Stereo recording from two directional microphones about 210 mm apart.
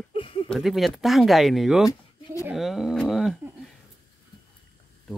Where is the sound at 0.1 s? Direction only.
25° left (ahead or behind).